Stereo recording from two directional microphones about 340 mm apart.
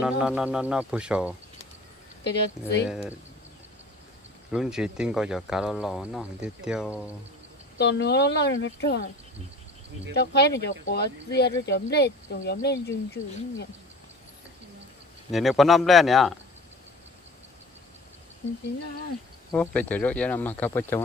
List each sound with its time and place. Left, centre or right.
0.0 s speech: centre
2.2 s speech: left
2.9 s speech: centre
4.5 s speech: centre
7.8 s speech: left
10.2 s speech: left
15.3 s speech: centre
19.5 s speech: centre